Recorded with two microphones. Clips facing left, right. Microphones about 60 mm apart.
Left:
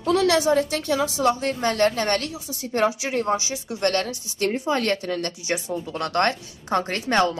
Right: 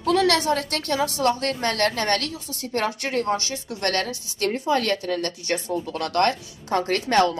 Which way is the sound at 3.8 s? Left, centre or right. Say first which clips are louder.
Left 2 dB; left.